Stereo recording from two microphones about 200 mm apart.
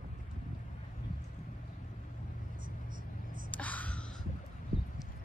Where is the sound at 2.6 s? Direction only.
45° right (ahead or behind).